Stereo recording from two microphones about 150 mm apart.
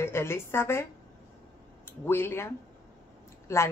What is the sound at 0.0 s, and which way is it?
Speech, 15° left (ahead or behind).